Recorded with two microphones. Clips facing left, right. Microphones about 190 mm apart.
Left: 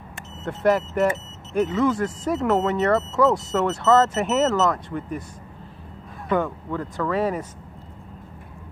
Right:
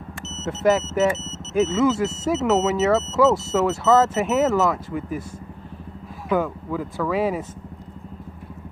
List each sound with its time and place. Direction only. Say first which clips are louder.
0.5 s speech: right 1 dB; 5° right (ahead or behind)
1.1 s a sound: right 3 dB; 20° right (ahead or behind)
1.8 s speech: right 2 dB; 5° right (ahead or behind)
6.2 s speech: right 1 dB; 5° right (ahead or behind)